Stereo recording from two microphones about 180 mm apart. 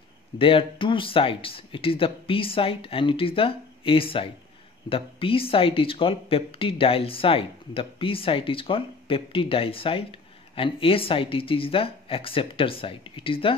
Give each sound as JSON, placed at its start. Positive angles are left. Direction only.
{"t": 0.4, "sound": "speech", "side_deg": 30}